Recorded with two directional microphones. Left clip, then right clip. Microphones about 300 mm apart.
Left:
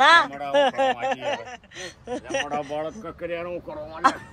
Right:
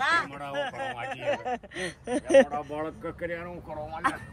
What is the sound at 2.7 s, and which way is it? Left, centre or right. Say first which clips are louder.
Speech: left 4 dB; centre.